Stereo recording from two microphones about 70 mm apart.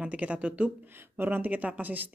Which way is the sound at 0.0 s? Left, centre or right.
Centre.